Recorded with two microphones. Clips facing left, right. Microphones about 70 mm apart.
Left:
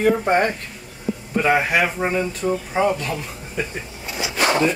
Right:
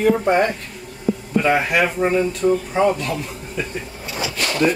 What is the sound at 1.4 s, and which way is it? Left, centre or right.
Speech, centre.